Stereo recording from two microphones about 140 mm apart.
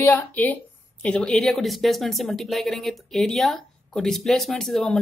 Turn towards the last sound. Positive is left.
turn(degrees=0)  # may be behind; listen again after turning